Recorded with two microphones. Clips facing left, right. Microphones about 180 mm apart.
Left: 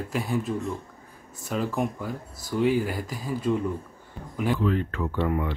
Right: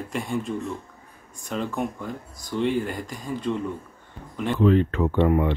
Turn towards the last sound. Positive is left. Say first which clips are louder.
# right 6 dB
turn(degrees=-25)  # may be behind; listen again after turning